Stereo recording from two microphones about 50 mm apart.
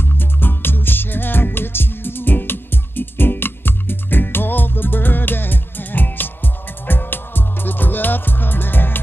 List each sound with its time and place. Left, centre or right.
0.0 s music: left